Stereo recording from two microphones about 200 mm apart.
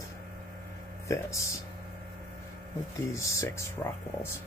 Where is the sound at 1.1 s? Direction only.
15° left (ahead or behind).